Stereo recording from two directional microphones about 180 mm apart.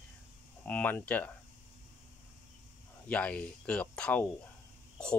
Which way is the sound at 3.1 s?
5° left (ahead or behind).